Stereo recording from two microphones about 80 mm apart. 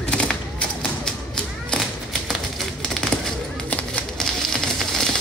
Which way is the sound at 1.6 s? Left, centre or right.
Centre.